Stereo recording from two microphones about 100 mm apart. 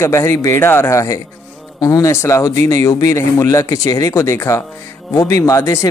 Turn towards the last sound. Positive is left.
turn(degrees=30)  # may be behind; listen again after turning